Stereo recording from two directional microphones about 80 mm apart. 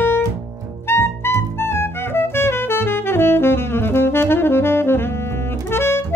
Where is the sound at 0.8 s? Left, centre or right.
Left.